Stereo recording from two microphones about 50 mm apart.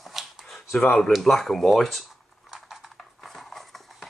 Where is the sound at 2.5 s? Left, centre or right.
Centre.